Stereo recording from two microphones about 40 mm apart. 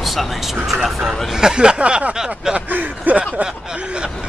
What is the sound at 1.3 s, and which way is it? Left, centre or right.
Speech, centre.